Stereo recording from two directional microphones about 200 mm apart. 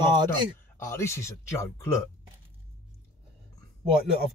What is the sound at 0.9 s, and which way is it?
Speech, 15° left (ahead or behind).